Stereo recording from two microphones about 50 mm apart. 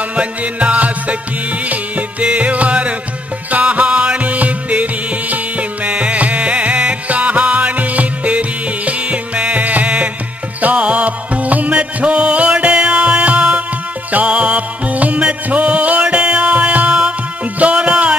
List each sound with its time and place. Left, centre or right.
0.1 s music: right